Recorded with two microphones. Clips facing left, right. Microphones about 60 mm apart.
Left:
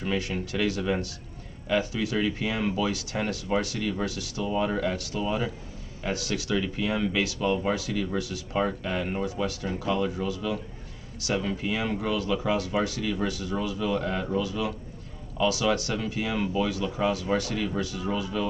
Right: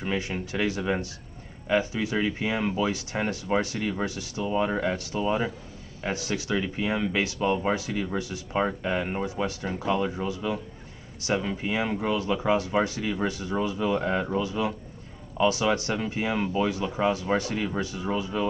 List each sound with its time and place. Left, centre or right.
0.0 s speech: right